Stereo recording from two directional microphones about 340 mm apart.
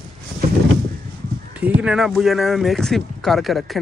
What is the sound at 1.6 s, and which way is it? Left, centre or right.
Speech, centre.